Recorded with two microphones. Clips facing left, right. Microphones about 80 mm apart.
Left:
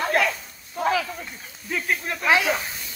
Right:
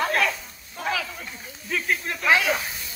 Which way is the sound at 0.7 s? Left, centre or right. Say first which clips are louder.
Left 5 dB; left.